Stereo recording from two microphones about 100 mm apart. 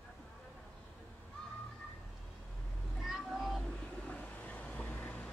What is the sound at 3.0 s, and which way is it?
Meow, centre (ahead or behind).